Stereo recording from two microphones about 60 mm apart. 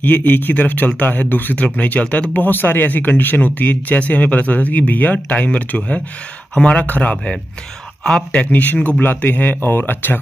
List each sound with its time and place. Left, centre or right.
0.0 s speech: left
8.0 s speech: centre
8.4 s speech: left